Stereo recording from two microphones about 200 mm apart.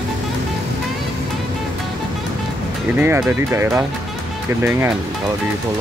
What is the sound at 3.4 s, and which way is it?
Speech, 15° right (ahead or behind).